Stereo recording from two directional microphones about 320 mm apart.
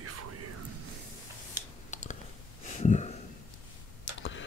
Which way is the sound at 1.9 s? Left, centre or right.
Left.